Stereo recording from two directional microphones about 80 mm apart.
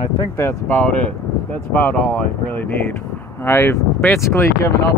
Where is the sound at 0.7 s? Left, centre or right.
Centre.